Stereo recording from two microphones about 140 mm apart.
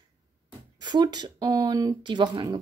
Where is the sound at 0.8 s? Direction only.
30° right (ahead or behind).